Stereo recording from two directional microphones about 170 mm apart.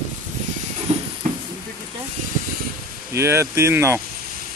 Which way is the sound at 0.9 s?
40° right (ahead or behind).